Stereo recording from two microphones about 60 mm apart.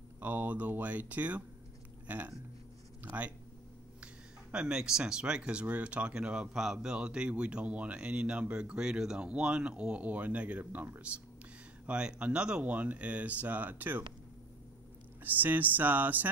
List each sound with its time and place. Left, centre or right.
0.2 s speech: right
10.6 s speech: right
11.8 s speech: centre
15.2 s speech: right